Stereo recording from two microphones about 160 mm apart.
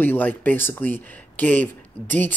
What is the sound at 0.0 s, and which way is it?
Speech, 10° left (ahead or behind).